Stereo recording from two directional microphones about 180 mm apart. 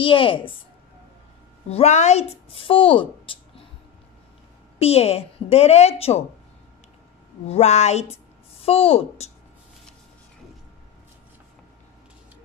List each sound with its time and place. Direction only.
0.0 s a woman's voice: 30° left (ahead or behind)
1.7 s speech: 35° left (ahead or behind)
4.7 s speech: 35° left (ahead or behind)
7.4 s a woman's voice: 35° left (ahead or behind)